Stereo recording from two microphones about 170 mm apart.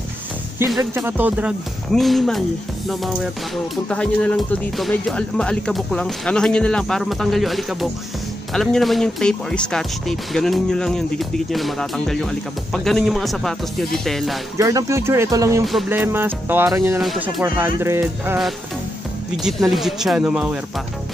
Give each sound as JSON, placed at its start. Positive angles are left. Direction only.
{"t": 0.7, "sound": "speech", "side_deg": -10}
{"t": 3.9, "sound": "speech", "side_deg": 5}
{"t": 14.6, "sound": "speech", "side_deg": -20}
{"t": 15.6, "sound": "speech", "side_deg": 0}
{"t": 15.9, "sound": "music", "side_deg": -15}
{"t": 17.0, "sound": "speech", "side_deg": 0}
{"t": 17.4, "sound": "music", "side_deg": -15}
{"t": 19.7, "sound": "speech", "side_deg": 0}